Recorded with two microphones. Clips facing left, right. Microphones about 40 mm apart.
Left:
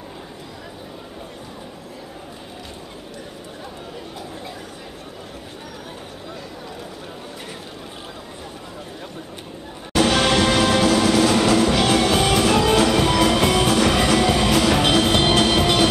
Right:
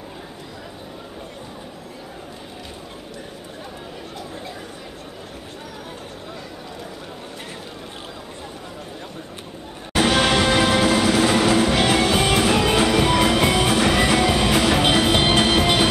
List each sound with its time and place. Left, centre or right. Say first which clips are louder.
10.1 s music: right 1 dB; centre